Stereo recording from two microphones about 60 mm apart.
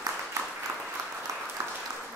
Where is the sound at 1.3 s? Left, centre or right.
Right.